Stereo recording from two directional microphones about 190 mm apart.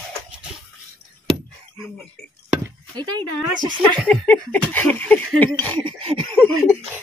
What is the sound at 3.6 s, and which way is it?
Speech, 25° right (ahead or behind).